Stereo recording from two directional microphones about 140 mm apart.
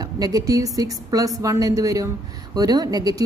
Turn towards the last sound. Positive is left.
turn(degrees=-25)  # may be behind; listen again after turning